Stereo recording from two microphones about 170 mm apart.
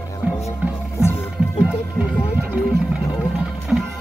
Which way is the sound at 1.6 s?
5° right (ahead or behind).